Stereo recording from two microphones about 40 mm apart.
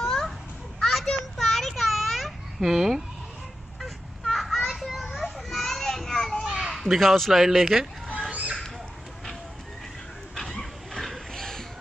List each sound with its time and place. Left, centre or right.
0.0 s babbling: centre
0.7 s children playing: centre
1.4 s a sound: centre
1.8 s babbling: centre
3.8 s vehicle: centre
4.6 s children playing: centre
5.5 s a sound: centre
6.4 s children playing: right
6.7 s speech: centre
8.3 s a sound: right
10.6 s dog: centre